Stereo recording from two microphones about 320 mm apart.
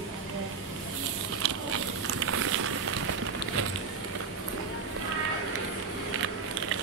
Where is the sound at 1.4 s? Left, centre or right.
Right.